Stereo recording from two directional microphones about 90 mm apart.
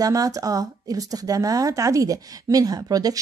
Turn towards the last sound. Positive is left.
turn(degrees=-45)  # may be behind; listen again after turning